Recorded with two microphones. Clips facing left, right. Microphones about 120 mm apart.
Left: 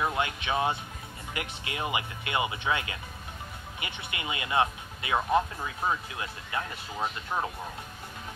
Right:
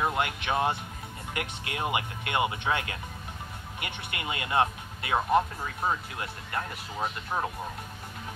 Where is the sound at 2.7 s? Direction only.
35° right (ahead or behind).